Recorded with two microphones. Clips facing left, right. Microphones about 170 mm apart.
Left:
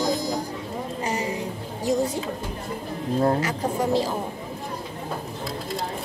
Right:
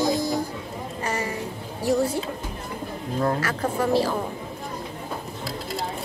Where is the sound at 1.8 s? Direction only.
20° left (ahead or behind).